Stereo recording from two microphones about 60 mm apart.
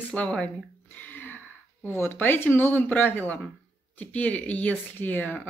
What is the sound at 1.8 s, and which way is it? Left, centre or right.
Speech, left.